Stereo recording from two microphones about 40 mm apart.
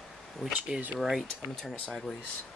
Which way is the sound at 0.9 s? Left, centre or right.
Centre.